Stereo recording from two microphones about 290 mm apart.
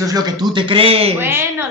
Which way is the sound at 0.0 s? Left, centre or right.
Centre.